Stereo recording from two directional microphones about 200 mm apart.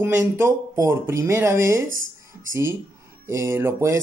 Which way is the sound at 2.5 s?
15° right (ahead or behind).